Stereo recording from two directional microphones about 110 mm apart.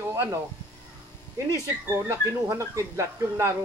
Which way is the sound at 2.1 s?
25° right (ahead or behind).